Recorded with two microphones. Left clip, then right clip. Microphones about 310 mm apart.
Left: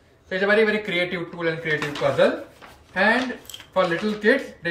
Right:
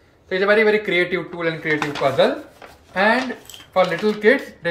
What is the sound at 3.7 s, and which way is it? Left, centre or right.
Speech, centre.